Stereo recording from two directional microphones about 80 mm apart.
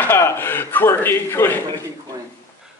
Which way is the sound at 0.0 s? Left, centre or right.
Left.